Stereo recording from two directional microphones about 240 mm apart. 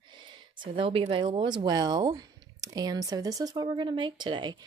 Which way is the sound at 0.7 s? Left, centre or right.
Right.